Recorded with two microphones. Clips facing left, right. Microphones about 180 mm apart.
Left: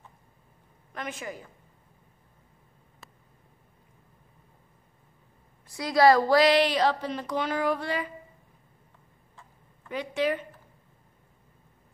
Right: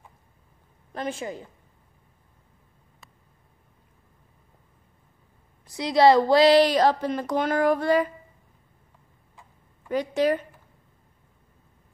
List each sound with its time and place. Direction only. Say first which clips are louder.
0.9 s a woman's voice: right 5 dB; 30° right (ahead or behind)
5.7 s speech: right 2 dB; 25° right (ahead or behind); by 8.1 s 45° right (ahead or behind)
9.8 s a woman's voice: right 5 dB; 40° right (ahead or behind)